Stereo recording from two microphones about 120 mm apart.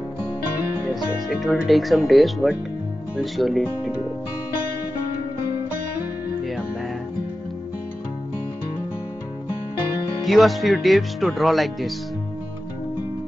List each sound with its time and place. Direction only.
0.9 s speech: centre (ahead or behind)
6.4 s music: centre (ahead or behind)
10.2 s speech: centre (ahead or behind)